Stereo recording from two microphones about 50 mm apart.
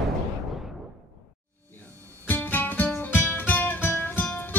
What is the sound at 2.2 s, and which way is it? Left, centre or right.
Music, left.